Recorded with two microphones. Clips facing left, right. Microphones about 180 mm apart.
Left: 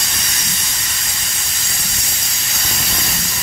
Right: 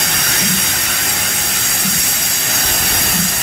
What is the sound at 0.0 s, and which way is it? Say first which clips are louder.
Steam: right 8 dB; 65° right (ahead or behind).